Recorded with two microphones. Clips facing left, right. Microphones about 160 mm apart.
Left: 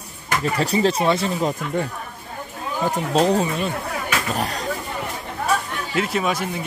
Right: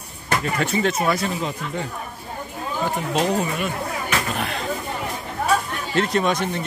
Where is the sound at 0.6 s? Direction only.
30° left (ahead or behind).